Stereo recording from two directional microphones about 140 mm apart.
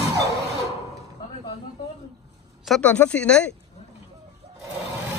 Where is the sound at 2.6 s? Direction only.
5° left (ahead or behind).